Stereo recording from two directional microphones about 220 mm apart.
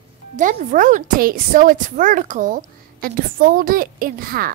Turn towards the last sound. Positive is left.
turn(degrees=-40)  # may be behind; listen again after turning